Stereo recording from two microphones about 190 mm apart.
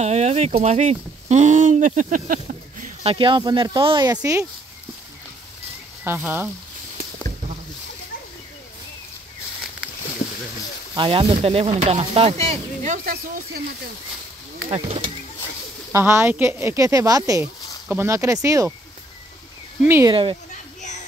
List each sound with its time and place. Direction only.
0.0 s speech: 35° right (ahead or behind)
3.0 s speech: 30° right (ahead or behind)
6.0 s speech: 10° right (ahead or behind)
11.0 s speech: 30° right (ahead or behind); by 13.2 s 45° right (ahead or behind)
15.9 s speech: 10° right (ahead or behind)
19.8 s speech: 15° right (ahead or behind)
20.1 s speech: 25° right (ahead or behind)